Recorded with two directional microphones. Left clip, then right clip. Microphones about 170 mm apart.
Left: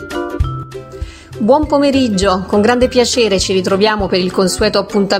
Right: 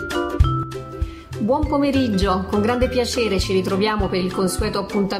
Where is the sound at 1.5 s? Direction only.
40° left (ahead or behind).